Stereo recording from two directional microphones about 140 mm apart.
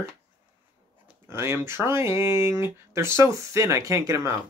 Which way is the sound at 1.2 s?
20° right (ahead or behind).